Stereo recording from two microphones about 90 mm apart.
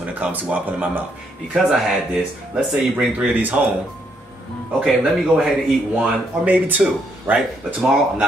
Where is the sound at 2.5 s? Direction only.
10° right (ahead or behind).